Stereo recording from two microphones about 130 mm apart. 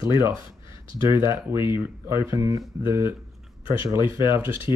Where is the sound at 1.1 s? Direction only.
20° right (ahead or behind).